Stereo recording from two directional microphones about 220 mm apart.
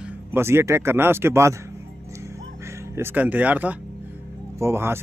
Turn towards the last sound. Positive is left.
turn(degrees=-10)  # may be behind; listen again after turning